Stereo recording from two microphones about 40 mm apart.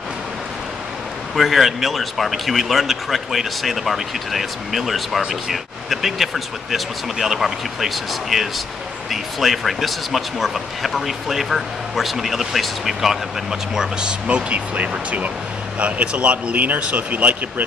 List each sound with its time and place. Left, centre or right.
1.3 s speech: centre; by 16.5 s right
16.5 s speech: right